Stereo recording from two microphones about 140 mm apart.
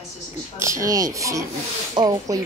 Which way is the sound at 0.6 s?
20° right (ahead or behind).